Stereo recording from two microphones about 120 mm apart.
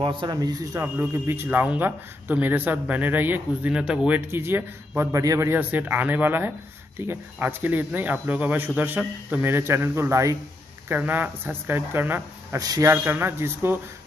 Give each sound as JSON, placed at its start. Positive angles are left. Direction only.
{"t": 0.0, "sound": "speech", "side_deg": -40}
{"t": 0.9, "sound": "speech", "side_deg": -20}
{"t": 4.3, "sound": "speech", "side_deg": -20}
{"t": 12.5, "sound": "speech", "side_deg": -30}
{"t": 12.9, "sound": "speech", "side_deg": -20}